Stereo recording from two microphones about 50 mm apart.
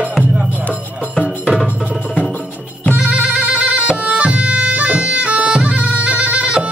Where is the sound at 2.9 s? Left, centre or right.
Right.